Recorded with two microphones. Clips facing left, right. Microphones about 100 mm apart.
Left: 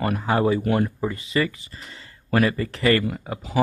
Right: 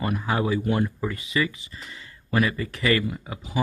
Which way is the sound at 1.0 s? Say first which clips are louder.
Left 2 dB; 35° left (ahead or behind).